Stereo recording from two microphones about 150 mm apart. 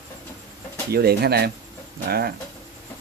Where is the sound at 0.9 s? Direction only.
90° right.